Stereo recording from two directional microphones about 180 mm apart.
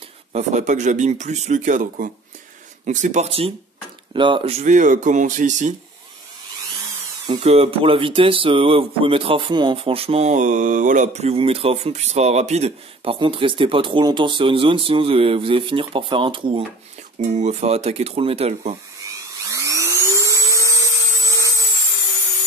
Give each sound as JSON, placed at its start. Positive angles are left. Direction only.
{"t": 0.3, "sound": "speech", "side_deg": -40}
{"t": 7.2, "sound": "speech", "side_deg": -35}
{"t": 17.4, "sound": "speech", "side_deg": -40}
{"t": 19.5, "sound": "vacuum cleaner", "side_deg": -15}